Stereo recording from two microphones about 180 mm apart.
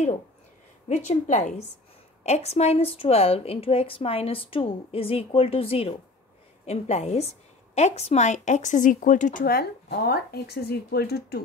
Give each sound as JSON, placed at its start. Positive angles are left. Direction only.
{"t": 0.8, "sound": "a woman's voice", "side_deg": 40}